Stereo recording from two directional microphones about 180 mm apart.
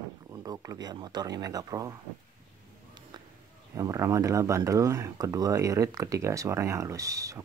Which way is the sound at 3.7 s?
15° right (ahead or behind).